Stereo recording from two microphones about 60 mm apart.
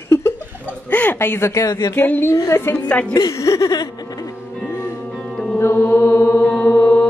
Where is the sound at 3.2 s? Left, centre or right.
Left.